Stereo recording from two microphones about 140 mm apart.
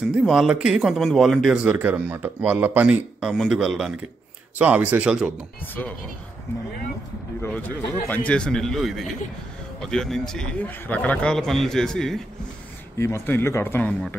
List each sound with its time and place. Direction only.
0.0 s speech: 5° right (ahead or behind)
7.4 s a man's voice: 15° left (ahead or behind)
12.9 s a man's voice: 20° left (ahead or behind)